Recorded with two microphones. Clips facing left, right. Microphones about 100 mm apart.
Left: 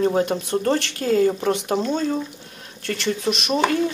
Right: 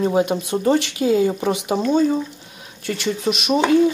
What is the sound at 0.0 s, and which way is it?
Speech, 5° right (ahead or behind).